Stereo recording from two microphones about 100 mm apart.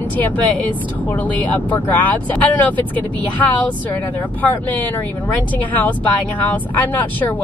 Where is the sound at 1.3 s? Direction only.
15° left (ahead or behind).